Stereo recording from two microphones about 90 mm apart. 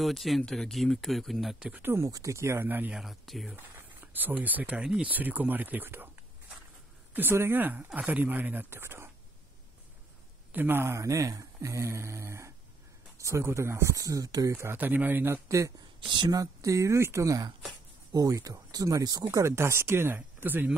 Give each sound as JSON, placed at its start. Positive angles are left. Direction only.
{"t": 0.0, "sound": "speech", "side_deg": 0}
{"t": 1.7, "sound": "speech", "side_deg": -25}
{"t": 2.0, "sound": "speech", "side_deg": -40}
{"t": 2.9, "sound": "speech", "side_deg": -5}
{"t": 3.5, "sound": "speech", "side_deg": -25}
{"t": 7.2, "sound": "speech", "side_deg": -25}
{"t": 10.5, "sound": "speech", "side_deg": -20}
{"t": 14.8, "sound": "speech", "side_deg": -20}
{"t": 15.4, "sound": "speech", "side_deg": -35}